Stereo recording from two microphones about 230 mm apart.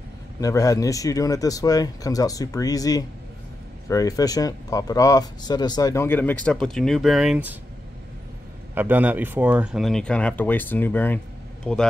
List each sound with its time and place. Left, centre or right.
0.4 s speech: centre
8.7 s speech: centre